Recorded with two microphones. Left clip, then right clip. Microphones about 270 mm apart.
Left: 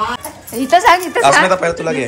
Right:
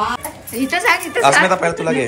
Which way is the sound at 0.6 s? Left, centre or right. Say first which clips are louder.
Left 6 dB; left.